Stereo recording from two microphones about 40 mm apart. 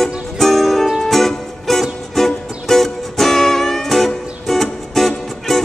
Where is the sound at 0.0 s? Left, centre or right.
Centre.